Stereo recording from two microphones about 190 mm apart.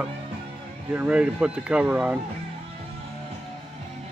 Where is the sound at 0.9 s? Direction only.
5° right (ahead or behind).